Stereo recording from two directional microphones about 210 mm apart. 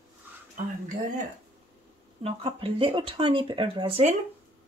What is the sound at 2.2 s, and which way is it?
Speech, 25° right (ahead or behind).